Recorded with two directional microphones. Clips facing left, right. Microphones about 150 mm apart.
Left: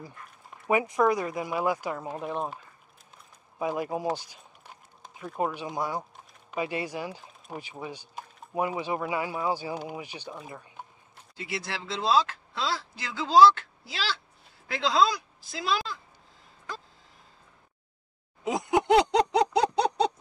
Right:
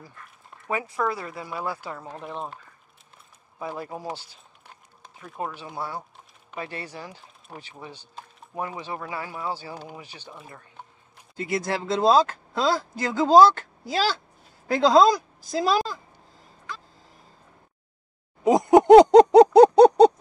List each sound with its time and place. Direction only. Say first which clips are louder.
0.7 s speech: left 4 dB; 15° left (ahead or behind)
5.2 s speech: left 3 dB; centre (ahead or behind)
5.5 s speech: left 2 dB; 15° left (ahead or behind)
10.5 s a sound: left 2 dB; 10° left (ahead or behind)
11.3 s speech: right 8 dB; 45° right (ahead or behind)
18.4 s a sound: right 10 dB; 40° right (ahead or behind)